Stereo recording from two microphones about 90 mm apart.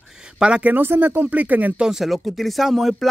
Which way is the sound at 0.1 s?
10° right (ahead or behind).